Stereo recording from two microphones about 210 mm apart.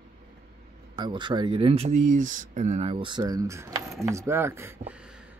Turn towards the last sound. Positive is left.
turn(degrees=-10)  # may be behind; listen again after turning